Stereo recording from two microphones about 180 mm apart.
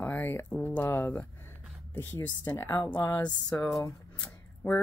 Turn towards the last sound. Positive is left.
turn(degrees=5)  # may be behind; listen again after turning